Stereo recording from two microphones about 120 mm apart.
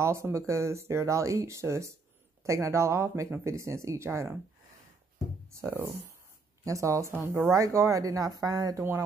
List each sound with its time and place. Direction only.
0.0 s speech: 25° right (ahead or behind)
6.6 s speech: 25° right (ahead or behind)